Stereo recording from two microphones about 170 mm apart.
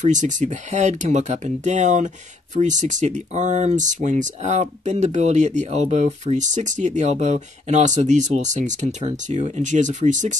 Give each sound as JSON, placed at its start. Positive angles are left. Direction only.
{"t": 0.0, "sound": "speech", "side_deg": -45}